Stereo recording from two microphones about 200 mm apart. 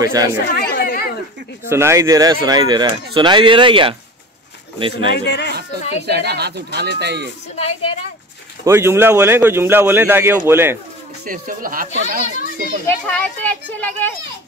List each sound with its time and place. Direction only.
0.0 s speech: 15° right (ahead or behind)
0.5 s chatter: 50° left (ahead or behind)
1.7 s speech: 15° right (ahead or behind)
5.1 s speech: 60° left (ahead or behind)
5.5 s a sound: 55° right (ahead or behind)
6.0 s speech: 55° right (ahead or behind)
7.5 s a woman's voice: 30° left (ahead or behind)
8.6 s speech: 10° right (ahead or behind)
11.2 s speech: 45° right (ahead or behind)
12.8 s a child's voice: 10° left (ahead or behind)